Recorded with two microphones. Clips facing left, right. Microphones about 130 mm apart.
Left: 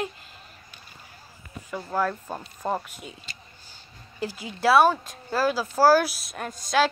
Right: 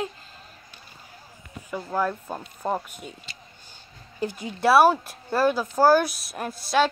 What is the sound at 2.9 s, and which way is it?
Speech, 45° right (ahead or behind).